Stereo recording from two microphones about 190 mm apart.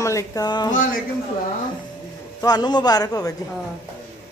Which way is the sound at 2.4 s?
20° left (ahead or behind).